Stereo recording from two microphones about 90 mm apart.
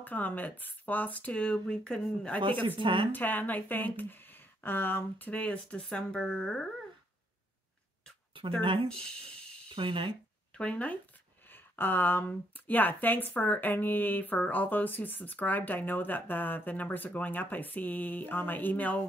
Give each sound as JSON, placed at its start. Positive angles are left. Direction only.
{"t": 0.0, "sound": "speech", "side_deg": 20}
{"t": 2.4, "sound": "speech", "side_deg": -70}
{"t": 3.1, "sound": "speech", "side_deg": 20}
{"t": 8.4, "sound": "speech", "side_deg": -70}
{"t": 8.8, "sound": "speech", "side_deg": 10}
{"t": 9.7, "sound": "speech", "side_deg": -70}
{"t": 10.5, "sound": "speech", "side_deg": 10}